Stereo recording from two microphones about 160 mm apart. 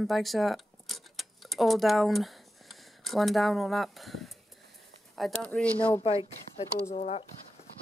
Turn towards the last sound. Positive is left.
turn(degrees=40)  # may be behind; listen again after turning